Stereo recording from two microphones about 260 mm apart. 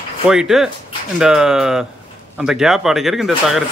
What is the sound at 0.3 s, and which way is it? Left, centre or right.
Speech, centre.